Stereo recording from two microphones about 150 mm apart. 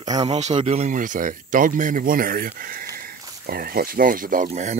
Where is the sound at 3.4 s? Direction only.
85° right; by 4.8 s 50° right (ahead or behind).